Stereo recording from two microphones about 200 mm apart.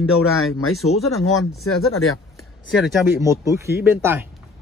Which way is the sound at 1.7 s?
90° left.